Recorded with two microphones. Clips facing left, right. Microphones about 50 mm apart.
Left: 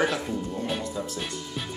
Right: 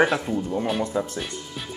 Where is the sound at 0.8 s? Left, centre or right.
Right.